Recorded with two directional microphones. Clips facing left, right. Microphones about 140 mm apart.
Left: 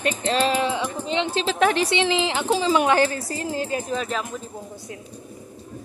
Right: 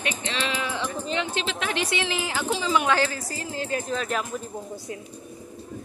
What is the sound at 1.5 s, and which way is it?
Speech, 50° left (ahead or behind).